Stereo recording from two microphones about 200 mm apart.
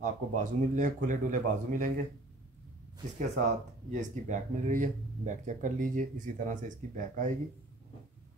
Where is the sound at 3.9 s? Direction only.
40° right (ahead or behind).